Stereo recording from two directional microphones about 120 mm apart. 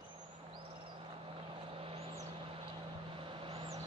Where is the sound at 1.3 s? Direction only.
45° right (ahead or behind).